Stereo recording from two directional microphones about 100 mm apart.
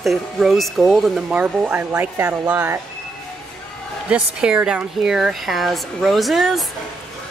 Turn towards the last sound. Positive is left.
turn(degrees=0)  # may be behind; listen again after turning